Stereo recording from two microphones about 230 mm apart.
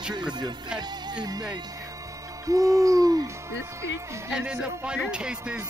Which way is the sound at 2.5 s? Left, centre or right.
Centre.